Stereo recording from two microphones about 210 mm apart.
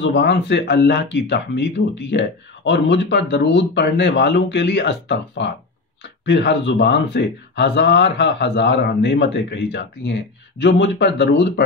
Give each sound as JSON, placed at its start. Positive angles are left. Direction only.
{"t": 0.0, "sound": "speech", "side_deg": 55}